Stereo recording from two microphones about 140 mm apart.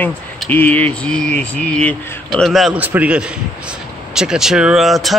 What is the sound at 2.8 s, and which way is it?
A man's voice, 10° right (ahead or behind).